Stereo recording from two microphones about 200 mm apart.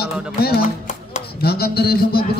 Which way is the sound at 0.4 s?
50° left (ahead or behind).